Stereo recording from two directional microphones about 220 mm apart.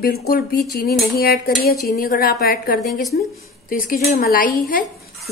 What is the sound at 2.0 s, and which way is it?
A woman's voice, 40° left (ahead or behind).